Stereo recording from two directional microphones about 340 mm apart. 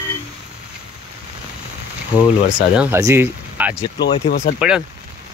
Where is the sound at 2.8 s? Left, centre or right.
Centre.